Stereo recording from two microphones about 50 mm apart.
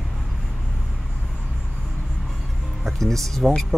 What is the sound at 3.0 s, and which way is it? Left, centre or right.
Speech, centre.